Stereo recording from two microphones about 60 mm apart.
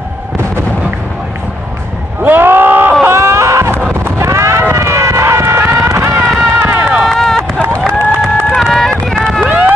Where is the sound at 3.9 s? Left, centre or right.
Right.